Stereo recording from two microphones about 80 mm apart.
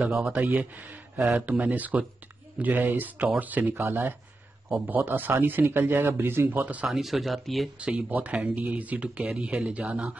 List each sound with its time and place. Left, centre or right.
0.1 s speech: centre
6.9 s speech: centre
7.8 s speech: centre